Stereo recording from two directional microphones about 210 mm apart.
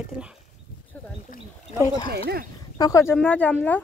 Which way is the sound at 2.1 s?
50° right (ahead or behind).